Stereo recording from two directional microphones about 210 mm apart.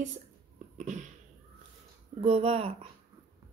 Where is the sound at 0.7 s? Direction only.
35° right (ahead or behind).